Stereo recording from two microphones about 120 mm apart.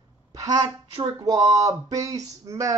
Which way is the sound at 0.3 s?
30° right (ahead or behind).